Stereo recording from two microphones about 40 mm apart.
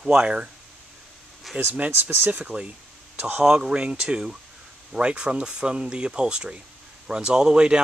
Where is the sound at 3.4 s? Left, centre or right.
Centre.